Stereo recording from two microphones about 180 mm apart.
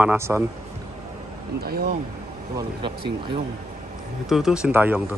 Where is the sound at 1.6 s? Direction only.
55° right (ahead or behind).